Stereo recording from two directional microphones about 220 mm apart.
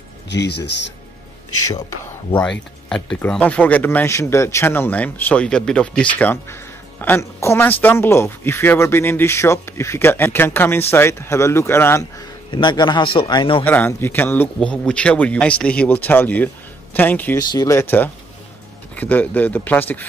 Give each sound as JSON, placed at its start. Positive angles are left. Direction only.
{"t": 0.3, "sound": "speech", "side_deg": 50}
{"t": 2.9, "sound": "speech", "side_deg": 5}
{"t": 13.7, "sound": "speech", "side_deg": 10}